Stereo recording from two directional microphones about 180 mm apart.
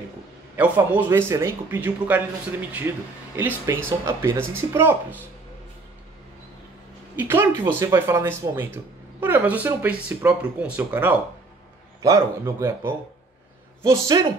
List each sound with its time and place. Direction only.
0.6 s speech: 10° right (ahead or behind)
3.3 s speech: 15° right (ahead or behind)
7.2 s speech: 10° right (ahead or behind)